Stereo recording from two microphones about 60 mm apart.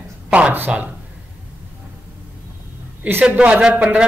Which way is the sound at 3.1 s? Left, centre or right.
Right.